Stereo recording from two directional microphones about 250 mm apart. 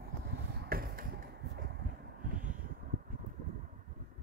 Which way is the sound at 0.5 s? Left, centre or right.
Right.